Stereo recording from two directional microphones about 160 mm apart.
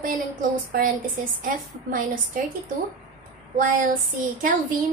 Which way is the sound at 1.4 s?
60° right (ahead or behind).